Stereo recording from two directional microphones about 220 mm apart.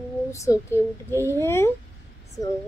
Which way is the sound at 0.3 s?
15° left (ahead or behind).